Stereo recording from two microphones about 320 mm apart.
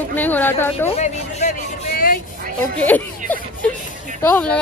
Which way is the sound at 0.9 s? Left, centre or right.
Left.